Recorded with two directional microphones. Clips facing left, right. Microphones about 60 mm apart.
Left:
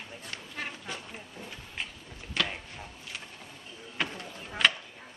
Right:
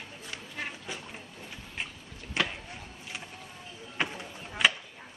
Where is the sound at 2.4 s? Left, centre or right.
Right.